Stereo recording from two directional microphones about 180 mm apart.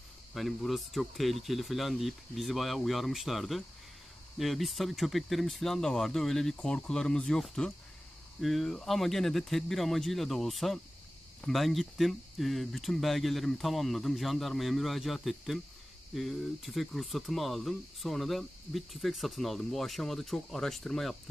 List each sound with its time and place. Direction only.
0.3 s speech: centre (ahead or behind)